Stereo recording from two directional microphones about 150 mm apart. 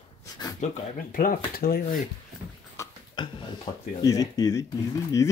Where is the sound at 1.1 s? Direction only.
70° left (ahead or behind).